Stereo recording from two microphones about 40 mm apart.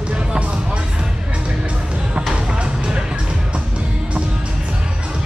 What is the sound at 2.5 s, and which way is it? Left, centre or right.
Music, right.